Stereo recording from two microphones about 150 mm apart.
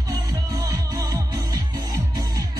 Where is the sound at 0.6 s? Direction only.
20° right (ahead or behind).